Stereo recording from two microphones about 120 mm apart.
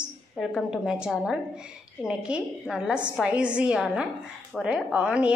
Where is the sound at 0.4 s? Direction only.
5° right (ahead or behind).